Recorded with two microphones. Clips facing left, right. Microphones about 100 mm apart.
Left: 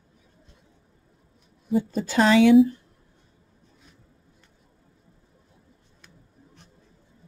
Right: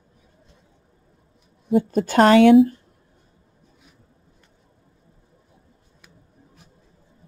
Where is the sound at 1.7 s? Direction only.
55° right (ahead or behind).